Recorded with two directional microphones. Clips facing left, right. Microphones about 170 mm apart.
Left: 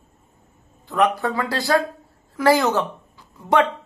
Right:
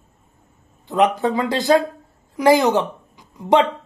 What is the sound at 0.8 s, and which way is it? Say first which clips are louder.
A woman's voice: right 3 dB; 20° right (ahead or behind).